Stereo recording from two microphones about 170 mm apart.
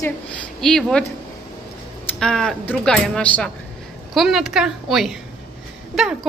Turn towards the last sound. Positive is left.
turn(degrees=0)  # may be behind; listen again after turning